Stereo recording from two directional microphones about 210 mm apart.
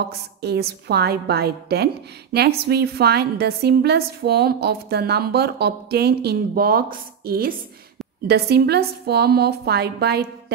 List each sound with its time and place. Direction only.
0.4 s a woman's voice: 50° right (ahead or behind)